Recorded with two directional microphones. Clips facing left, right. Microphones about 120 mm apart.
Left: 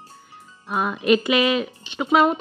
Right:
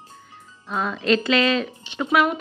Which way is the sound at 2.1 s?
30° left (ahead or behind).